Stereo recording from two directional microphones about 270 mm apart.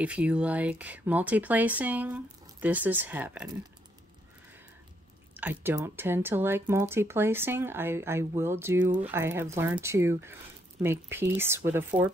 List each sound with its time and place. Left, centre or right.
0.0 s speech: centre
5.3 s speech: centre